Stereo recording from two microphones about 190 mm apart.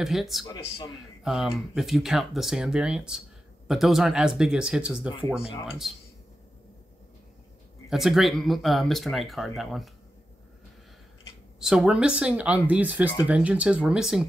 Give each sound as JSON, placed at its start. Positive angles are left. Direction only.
{"t": 0.0, "sound": "speech", "side_deg": 0}
{"t": 0.5, "sound": "speech", "side_deg": 20}
{"t": 1.2, "sound": "speech", "side_deg": 0}
{"t": 7.9, "sound": "speech", "side_deg": 0}
{"t": 11.6, "sound": "speech", "side_deg": -5}